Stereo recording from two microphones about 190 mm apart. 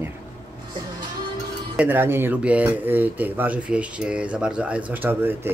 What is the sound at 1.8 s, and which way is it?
Speech, 10° right (ahead or behind).